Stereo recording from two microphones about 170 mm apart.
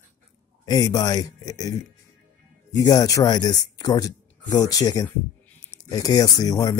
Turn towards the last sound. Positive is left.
turn(degrees=20)  # may be behind; listen again after turning